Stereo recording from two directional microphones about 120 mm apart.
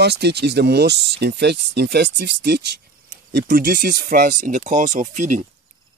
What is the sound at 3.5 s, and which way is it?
Speech, 90° right.